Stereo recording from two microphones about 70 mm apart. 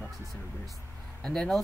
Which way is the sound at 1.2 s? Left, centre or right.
Centre.